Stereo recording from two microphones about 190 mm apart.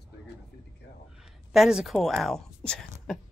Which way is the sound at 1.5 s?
Centre (ahead or behind).